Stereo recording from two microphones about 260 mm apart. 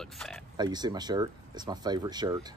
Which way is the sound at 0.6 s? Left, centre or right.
Centre.